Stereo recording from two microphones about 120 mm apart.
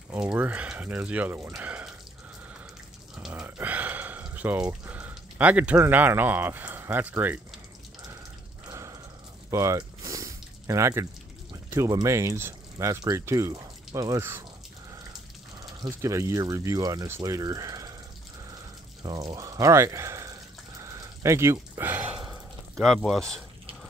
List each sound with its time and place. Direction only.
0.3 s speech: 10° right (ahead or behind)
1.5 s water: 10° right (ahead or behind)
3.3 s a sound: 15° right (ahead or behind)
5.8 s speech: 15° right (ahead or behind)
8.6 s a sound: 25° right (ahead or behind)
9.5 s drip: 25° right (ahead or behind)
11.5 s speech: 25° right (ahead or behind)
15.6 s speech: 30° right (ahead or behind)
19.0 s a sound: 30° right (ahead or behind); by 22.2 s 15° right (ahead or behind)
22.8 s speech: centre (ahead or behind)